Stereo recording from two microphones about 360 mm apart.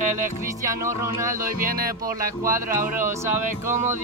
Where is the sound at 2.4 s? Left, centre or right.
Centre.